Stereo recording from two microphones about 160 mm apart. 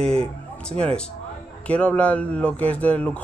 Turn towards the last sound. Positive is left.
turn(degrees=10)  # may be behind; listen again after turning